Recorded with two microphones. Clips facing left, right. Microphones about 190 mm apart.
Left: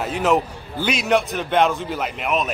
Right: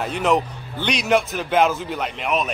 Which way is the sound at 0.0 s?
Centre (ahead or behind).